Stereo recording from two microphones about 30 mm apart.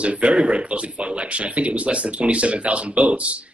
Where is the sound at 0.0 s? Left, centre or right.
Right.